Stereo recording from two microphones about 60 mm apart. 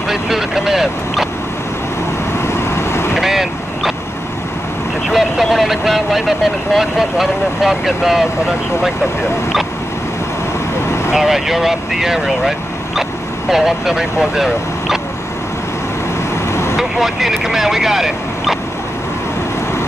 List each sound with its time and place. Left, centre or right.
0.1 s speech: centre
2.4 s vehicle: left
3.2 s vehicle: centre
5.1 s speech: centre
11.1 s speech: centre
16.7 s speech: centre